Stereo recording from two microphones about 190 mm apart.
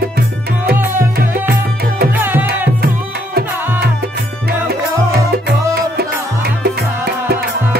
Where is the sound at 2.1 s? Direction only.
10° right (ahead or behind).